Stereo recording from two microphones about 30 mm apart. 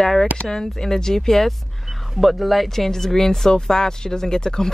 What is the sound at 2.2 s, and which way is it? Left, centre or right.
Speech, centre.